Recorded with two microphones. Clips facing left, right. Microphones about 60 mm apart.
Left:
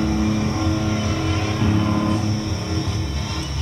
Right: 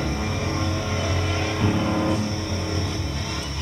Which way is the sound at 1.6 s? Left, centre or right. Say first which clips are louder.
Left 2 dB; centre.